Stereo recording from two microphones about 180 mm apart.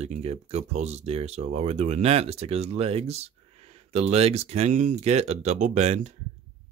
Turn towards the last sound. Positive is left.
turn(degrees=-40)  # may be behind; listen again after turning